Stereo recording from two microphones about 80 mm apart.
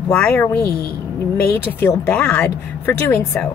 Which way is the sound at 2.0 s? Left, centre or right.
Left.